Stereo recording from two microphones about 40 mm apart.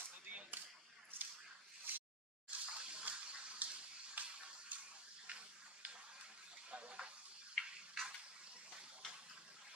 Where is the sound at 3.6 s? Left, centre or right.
Right.